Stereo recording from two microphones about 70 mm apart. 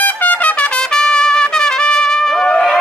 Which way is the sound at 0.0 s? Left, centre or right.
Left.